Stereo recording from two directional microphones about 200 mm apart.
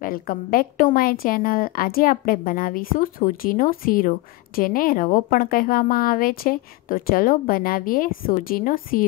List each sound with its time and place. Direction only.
0.0 s a woman's voice: 45° left (ahead or behind)